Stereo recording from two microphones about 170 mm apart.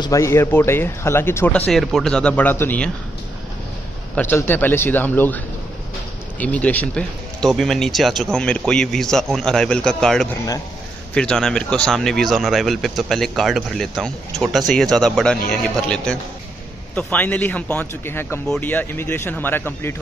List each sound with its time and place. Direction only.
0.0 s speech: 20° left (ahead or behind)
1.7 s speech: centre (ahead or behind)
4.1 s speech: 10° left (ahead or behind)
6.4 s speech: 10° left (ahead or behind)